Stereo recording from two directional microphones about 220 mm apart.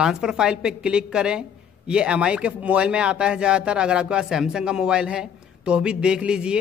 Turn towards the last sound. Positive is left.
turn(degrees=-5)  # may be behind; listen again after turning